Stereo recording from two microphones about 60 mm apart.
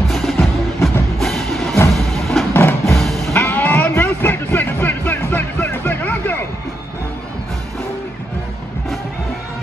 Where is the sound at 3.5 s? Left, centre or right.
Left.